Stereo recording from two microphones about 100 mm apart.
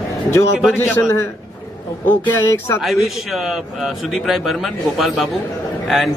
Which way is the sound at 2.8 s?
5° right (ahead or behind).